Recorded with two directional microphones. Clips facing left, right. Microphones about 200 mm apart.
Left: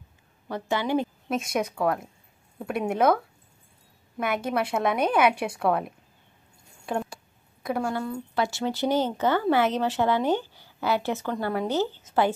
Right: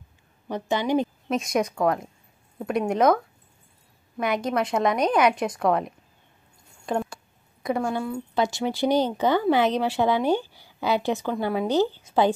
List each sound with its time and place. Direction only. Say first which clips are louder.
0.5 s speech: right 2 dB; 20° right (ahead or behind)
1.3 s speech: right 3 dB; 5° left (ahead or behind)
4.2 s a woman's voice: right 2 dB; 5° left (ahead or behind)
8.4 s a woman's voice: right 2 dB; 15° right (ahead or behind)